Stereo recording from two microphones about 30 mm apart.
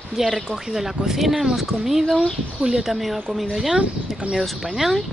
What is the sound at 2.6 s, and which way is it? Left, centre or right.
Speech, centre.